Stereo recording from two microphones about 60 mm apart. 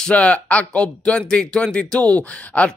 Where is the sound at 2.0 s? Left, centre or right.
Left.